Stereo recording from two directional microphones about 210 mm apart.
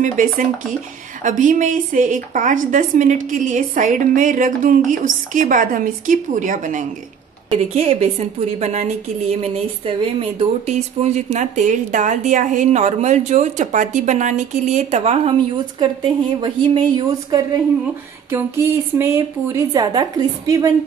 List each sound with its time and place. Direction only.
0.0 s a woman's voice: 40° right (ahead or behind); by 20.7 s 15° right (ahead or behind)